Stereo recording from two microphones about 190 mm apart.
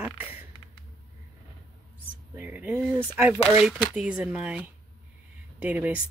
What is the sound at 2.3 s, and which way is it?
Speech, 10° right (ahead or behind).